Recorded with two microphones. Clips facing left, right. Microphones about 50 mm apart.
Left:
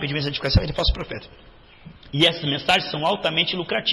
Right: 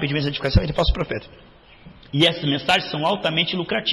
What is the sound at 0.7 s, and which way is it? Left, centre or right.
Speech, right.